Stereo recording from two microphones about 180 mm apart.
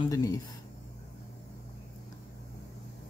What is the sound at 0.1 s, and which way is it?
Speech, 20° left (ahead or behind).